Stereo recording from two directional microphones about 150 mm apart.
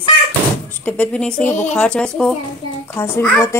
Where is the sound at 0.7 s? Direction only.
10° left (ahead or behind).